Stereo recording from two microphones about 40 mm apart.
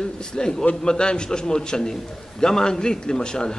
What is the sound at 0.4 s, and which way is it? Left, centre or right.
A man's voice, centre.